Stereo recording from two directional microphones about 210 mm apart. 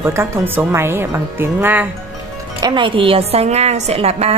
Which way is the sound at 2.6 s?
25° right (ahead or behind).